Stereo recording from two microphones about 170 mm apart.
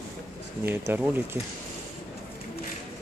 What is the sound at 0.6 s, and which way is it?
Speech, 10° right (ahead or behind).